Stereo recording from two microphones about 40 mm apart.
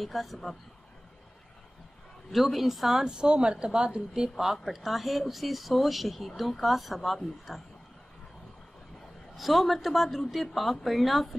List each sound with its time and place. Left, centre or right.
0.0 s speech: centre
2.3 s a woman's voice: centre; by 4.0 s right
4.1 s a woman's voice: centre
9.4 s speech: centre